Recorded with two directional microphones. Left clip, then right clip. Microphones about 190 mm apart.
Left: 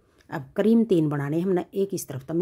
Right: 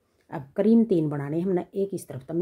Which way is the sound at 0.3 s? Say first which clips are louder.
Even; 25° left (ahead or behind).